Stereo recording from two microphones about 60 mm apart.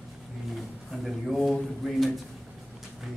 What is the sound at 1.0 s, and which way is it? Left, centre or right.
Speech, centre.